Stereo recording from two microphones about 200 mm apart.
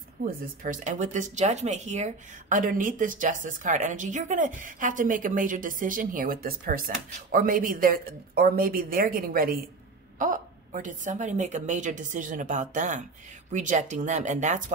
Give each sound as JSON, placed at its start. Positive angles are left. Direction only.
{"t": 0.2, "sound": "speech", "side_deg": -40}